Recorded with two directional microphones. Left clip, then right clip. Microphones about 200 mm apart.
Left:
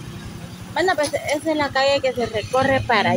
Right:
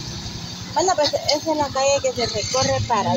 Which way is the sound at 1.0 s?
25° left (ahead or behind).